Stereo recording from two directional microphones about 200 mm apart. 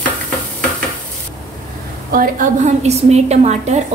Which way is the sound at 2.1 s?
45° right (ahead or behind).